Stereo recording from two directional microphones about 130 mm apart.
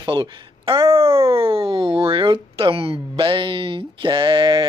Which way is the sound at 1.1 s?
20° right (ahead or behind).